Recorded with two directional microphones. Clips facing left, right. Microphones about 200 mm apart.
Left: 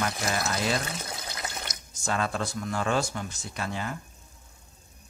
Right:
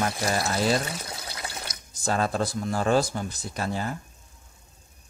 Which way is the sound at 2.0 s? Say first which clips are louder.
Right 4 dB; 35° right (ahead or behind).